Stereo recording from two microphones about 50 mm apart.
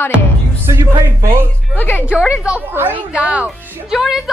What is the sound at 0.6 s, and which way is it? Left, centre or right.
Speech, right.